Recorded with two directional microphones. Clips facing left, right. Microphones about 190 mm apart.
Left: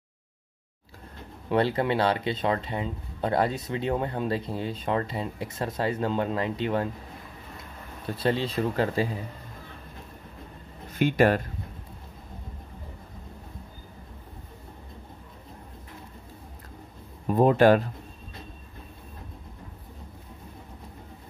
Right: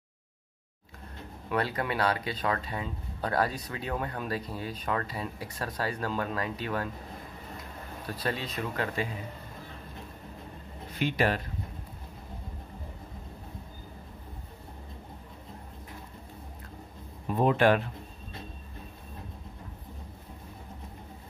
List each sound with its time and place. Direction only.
1.5 s speech: 25° left (ahead or behind)
8.1 s speech: 25° left (ahead or behind)
10.9 s speech: 50° left (ahead or behind)
17.3 s speech: 40° left (ahead or behind)